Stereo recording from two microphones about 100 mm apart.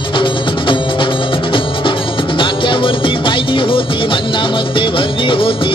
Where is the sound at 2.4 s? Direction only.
60° left (ahead or behind).